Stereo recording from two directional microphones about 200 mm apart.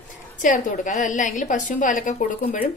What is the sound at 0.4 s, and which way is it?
A woman's voice, 40° left (ahead or behind).